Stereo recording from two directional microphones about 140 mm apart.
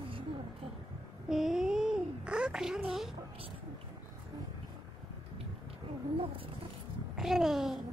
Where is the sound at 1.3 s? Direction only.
5° right (ahead or behind).